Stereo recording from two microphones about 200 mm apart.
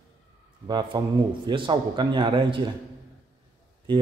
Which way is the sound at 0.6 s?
20° right (ahead or behind).